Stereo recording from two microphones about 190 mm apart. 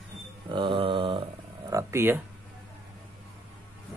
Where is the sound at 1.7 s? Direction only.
15° right (ahead or behind).